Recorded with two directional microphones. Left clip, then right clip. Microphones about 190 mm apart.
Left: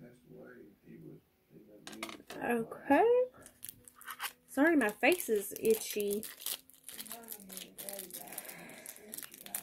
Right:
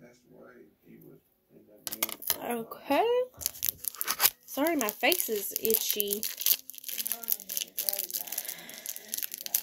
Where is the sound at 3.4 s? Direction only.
45° right (ahead or behind).